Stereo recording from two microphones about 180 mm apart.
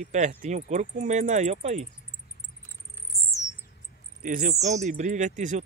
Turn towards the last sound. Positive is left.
turn(degrees=-45)  # may be behind; listen again after turning